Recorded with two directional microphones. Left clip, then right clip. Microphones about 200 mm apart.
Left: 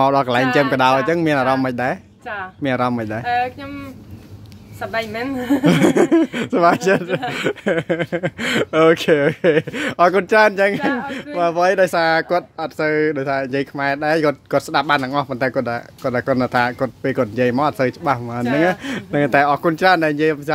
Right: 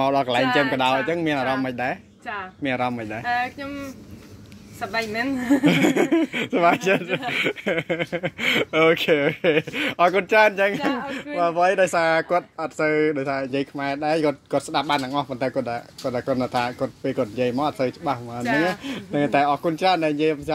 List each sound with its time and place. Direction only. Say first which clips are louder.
0.0 s speech: left 5 dB; 35° left (ahead or behind)
5.7 s speech: left 7 dB; 30° left (ahead or behind)
18.4 s speech: left 3 dB; 15° left (ahead or behind)
18.9 s speech: left 5 dB; 25° left (ahead or behind)